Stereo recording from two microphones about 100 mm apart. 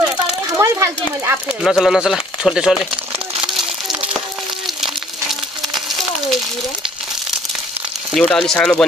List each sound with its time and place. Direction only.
0.6 s a sound: 30° right (ahead or behind)
1.6 s speech: centre (ahead or behind)
8.1 s speech: 5° left (ahead or behind)